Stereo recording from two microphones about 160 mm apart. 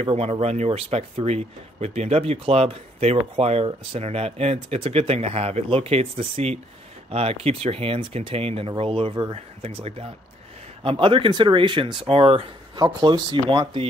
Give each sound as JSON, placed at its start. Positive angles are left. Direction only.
{"t": 0.0, "sound": "a man's voice", "side_deg": -40}